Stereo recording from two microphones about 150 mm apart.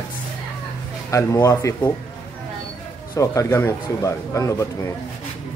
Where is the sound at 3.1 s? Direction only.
20° left (ahead or behind).